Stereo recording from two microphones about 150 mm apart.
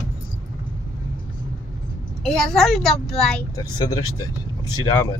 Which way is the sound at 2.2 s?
Centre (ahead or behind).